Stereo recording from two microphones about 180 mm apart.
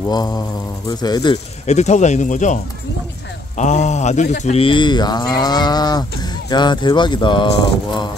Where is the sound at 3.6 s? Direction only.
40° left (ahead or behind); by 8.1 s 25° left (ahead or behind).